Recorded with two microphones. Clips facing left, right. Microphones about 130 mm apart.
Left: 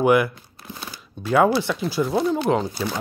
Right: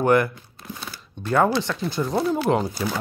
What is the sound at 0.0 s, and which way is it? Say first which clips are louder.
Speech: left 1 dB; 10° left (ahead or behind).